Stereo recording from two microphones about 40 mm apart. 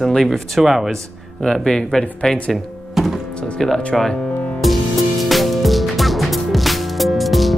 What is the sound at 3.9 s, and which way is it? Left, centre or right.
Speech, centre.